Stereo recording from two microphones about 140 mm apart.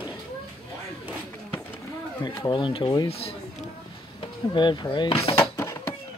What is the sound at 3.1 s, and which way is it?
Speech, 45° left (ahead or behind).